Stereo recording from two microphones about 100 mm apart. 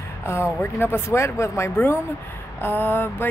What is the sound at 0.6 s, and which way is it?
Speech, 25° left (ahead or behind).